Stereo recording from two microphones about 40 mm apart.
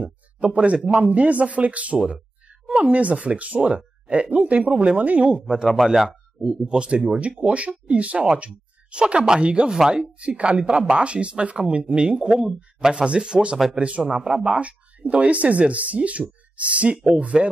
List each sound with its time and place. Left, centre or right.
0.0 s speech: right
2.0 s speech: centre
2.8 s speech: right
6.4 s speech: centre
7.2 s speech: right
9.7 s speech: centre
10.1 s speech: right